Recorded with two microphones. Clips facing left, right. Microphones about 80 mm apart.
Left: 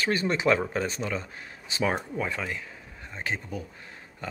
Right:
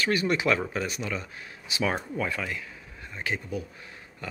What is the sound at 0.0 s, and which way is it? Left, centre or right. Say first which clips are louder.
Speech: even; left.